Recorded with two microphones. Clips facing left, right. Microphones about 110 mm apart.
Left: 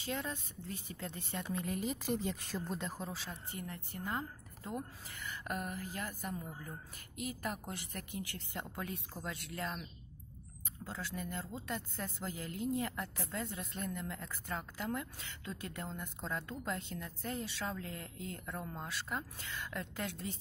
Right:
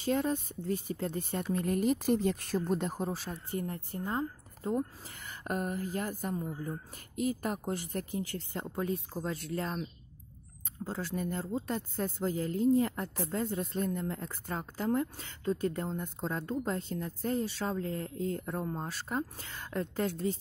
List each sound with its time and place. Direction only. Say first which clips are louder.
0.0 s speech: right 10 dB; 45° right (ahead or behind)
2.5 s speech: right 9 dB; 45° right (ahead or behind)